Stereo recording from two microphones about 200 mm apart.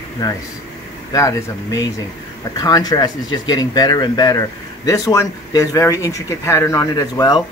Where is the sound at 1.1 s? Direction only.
15° left (ahead or behind).